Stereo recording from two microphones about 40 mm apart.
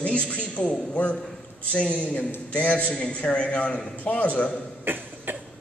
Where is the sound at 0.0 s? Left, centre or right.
Left.